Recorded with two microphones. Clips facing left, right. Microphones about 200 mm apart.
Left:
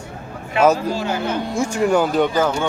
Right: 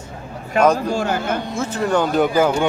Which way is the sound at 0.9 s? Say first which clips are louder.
Right 1 dB; 50° right (ahead or behind).